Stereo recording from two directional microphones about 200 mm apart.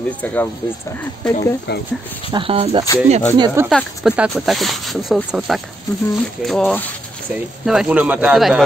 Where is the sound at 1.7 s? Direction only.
55° left (ahead or behind).